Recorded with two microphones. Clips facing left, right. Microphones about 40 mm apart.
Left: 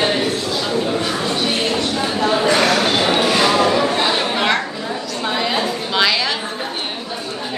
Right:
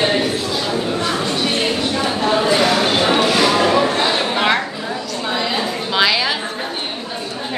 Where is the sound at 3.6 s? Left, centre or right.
Centre.